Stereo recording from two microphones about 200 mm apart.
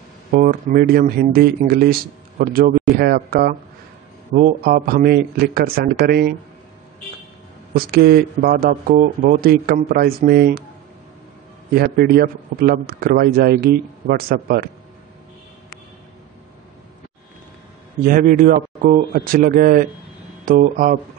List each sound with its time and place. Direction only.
0.3 s a man's voice: 40° right (ahead or behind)
7.7 s a man's voice: 50° right (ahead or behind)
11.7 s a man's voice: 50° right (ahead or behind)
18.0 s a man's voice: 45° right (ahead or behind)